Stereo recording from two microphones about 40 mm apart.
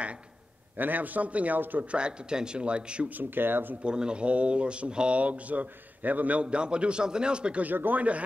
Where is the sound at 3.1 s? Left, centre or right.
Right.